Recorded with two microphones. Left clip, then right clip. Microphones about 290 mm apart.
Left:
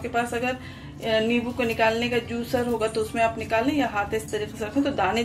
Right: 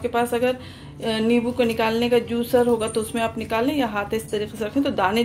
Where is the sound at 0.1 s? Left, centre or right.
Right.